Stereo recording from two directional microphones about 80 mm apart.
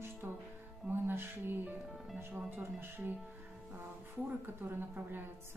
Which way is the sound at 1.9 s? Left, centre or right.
Centre.